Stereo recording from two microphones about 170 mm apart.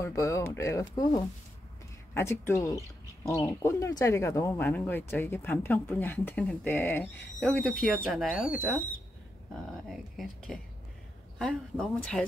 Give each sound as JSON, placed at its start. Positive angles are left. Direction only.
{"t": 0.0, "sound": "speech", "side_deg": 20}
{"t": 8.1, "sound": "speech", "side_deg": -5}
{"t": 9.8, "sound": "speech", "side_deg": 0}